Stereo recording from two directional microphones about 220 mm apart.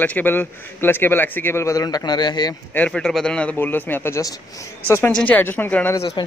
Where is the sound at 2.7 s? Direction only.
5° left (ahead or behind).